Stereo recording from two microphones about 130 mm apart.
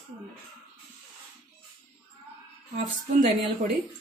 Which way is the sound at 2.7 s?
70° right (ahead or behind).